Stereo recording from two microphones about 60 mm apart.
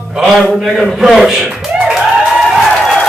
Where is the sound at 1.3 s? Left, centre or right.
Centre.